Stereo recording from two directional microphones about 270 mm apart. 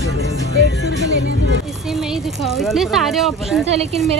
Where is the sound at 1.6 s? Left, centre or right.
Centre.